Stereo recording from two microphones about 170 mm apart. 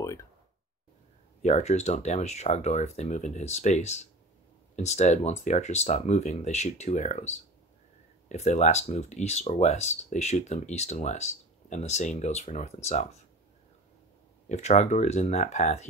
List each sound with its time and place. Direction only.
0.0 s a sound: 15° left (ahead or behind)
1.4 s speech: 40° left (ahead or behind)
14.5 s speech: 40° left (ahead or behind)